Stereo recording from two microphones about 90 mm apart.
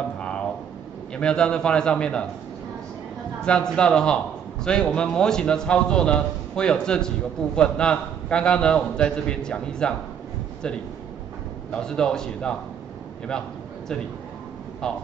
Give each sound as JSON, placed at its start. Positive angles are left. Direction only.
{"t": 1.1, "sound": "a man's voice", "side_deg": 10}
{"t": 3.4, "sound": "a man's voice", "side_deg": 10}
{"t": 11.7, "sound": "a man's voice", "side_deg": 10}